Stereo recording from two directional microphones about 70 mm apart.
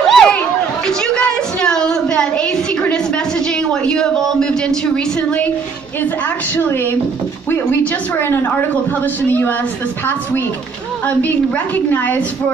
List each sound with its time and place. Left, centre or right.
0.0 s a sound: centre
6.5 s a woman's voice: left
8.2 s a woman's voice: left
11.1 s a woman's voice: left